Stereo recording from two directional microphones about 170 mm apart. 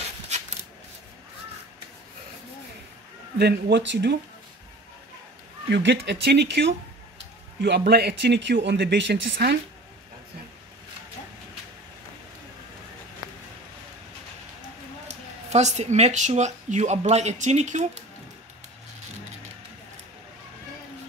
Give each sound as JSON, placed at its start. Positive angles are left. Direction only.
{"t": 0.3, "sound": "a sound", "side_deg": -45}
{"t": 3.3, "sound": "speech", "side_deg": -75}
{"t": 5.7, "sound": "speech", "side_deg": -90}
{"t": 15.0, "sound": "speech", "side_deg": -40}